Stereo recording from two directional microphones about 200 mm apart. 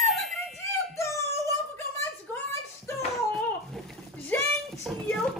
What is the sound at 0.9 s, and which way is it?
Child singing, 15° left (ahead or behind).